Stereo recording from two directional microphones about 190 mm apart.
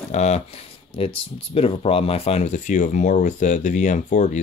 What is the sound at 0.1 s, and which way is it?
Speech, 35° left (ahead or behind).